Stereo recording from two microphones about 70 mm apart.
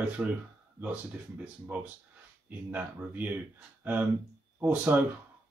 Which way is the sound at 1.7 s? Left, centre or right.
Right.